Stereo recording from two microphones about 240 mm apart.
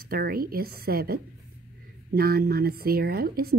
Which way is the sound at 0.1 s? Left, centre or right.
Right.